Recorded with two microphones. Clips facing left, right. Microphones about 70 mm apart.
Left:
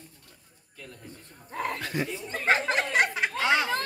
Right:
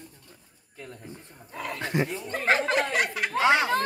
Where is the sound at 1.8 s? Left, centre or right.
Right.